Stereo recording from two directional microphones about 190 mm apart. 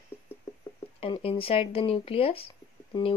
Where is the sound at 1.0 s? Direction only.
30° left (ahead or behind).